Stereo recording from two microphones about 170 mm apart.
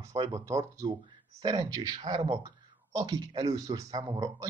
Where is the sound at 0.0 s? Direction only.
20° right (ahead or behind).